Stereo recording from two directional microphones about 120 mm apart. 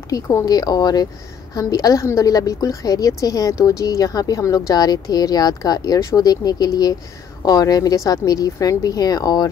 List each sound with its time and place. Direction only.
0.1 s a woman's voice: 25° left (ahead or behind)